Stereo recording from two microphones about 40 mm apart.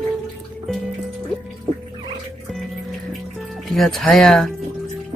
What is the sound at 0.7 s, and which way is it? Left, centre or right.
Music, centre.